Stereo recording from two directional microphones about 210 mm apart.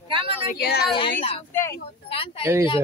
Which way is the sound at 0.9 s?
25° left (ahead or behind).